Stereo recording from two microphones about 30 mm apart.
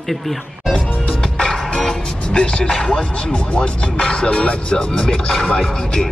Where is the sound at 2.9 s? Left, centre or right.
Left.